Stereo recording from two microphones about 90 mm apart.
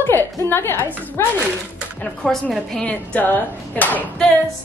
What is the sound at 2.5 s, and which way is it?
Speech, 5° left (ahead or behind).